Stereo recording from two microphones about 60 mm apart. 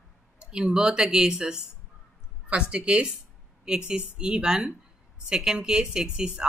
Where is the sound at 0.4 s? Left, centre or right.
Centre.